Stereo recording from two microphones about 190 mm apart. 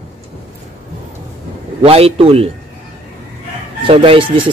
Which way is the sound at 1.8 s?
30° right (ahead or behind).